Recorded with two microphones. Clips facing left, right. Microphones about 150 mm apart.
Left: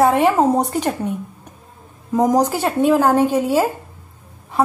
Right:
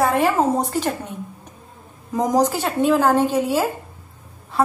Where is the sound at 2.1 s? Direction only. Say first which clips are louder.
Left 3 dB; 10° left (ahead or behind).